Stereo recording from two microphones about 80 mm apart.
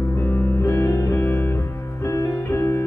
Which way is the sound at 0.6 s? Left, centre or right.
Left.